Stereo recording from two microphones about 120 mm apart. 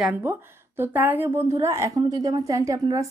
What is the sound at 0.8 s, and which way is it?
A woman's voice, 15° right (ahead or behind).